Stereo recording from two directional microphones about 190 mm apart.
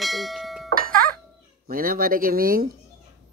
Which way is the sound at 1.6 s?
50° right (ahead or behind).